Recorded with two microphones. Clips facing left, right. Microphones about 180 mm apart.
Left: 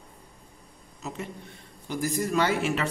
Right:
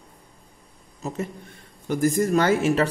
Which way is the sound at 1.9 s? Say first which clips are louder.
Right 7 dB; 50° right (ahead or behind).